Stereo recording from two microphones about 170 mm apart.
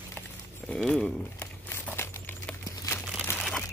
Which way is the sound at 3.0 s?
Centre (ahead or behind).